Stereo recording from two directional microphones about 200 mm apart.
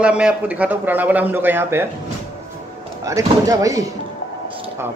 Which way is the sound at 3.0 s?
15° right (ahead or behind).